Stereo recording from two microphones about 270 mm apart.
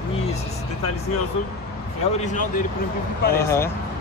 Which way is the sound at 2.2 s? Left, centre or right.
Left.